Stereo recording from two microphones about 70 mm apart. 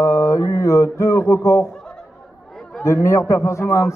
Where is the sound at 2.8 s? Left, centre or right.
Left.